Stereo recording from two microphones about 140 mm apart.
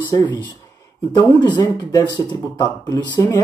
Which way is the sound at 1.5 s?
30° left (ahead or behind).